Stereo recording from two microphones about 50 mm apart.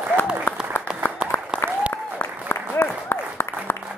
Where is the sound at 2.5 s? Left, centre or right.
Left.